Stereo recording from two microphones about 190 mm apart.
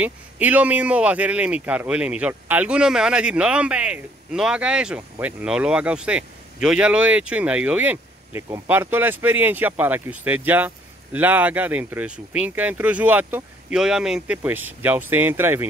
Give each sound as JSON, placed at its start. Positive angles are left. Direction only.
{"t": 0.0, "sound": "a man's voice", "side_deg": -10}